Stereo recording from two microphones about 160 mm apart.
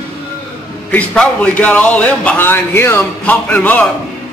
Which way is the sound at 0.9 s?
5° left (ahead or behind).